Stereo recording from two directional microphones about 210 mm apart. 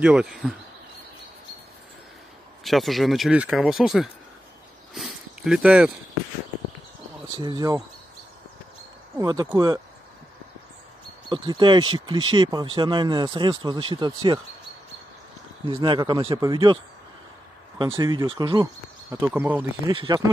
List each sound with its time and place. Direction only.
0.0 s speech: 5° right (ahead or behind)
2.6 s speech: centre (ahead or behind)
4.9 s a sound: centre (ahead or behind)
7.3 s speech: 20° right (ahead or behind)
9.1 s speech: 20° right (ahead or behind)
11.2 s speech: 20° right (ahead or behind)
15.6 s speech: 25° right (ahead or behind); by 19.6 s 10° right (ahead or behind)
19.9 s speech: 25° right (ahead or behind)